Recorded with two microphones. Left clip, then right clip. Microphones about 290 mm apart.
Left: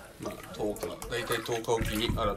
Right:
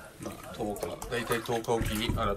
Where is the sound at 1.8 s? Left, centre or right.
Centre.